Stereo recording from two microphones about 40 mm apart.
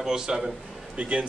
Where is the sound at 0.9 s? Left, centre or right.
Right.